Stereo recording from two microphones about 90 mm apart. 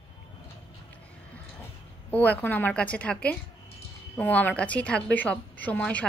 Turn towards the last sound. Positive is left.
turn(degrees=15)  # may be behind; listen again after turning